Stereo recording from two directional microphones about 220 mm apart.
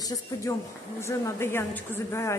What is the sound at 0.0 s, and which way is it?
A woman's voice, 15° left (ahead or behind).